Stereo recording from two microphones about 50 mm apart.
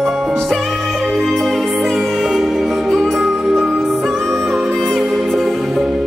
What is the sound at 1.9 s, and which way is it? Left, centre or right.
Music, centre.